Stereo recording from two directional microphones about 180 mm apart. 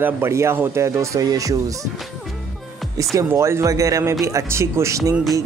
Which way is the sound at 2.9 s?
15° right (ahead or behind).